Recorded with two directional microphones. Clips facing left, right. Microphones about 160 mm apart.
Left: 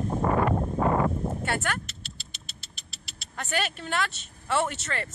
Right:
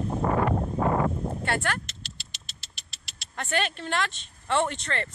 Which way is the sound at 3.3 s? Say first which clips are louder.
Right 2 dB; 5° left (ahead or behind).